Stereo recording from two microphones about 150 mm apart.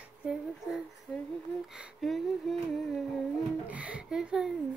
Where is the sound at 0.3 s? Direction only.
Centre (ahead or behind).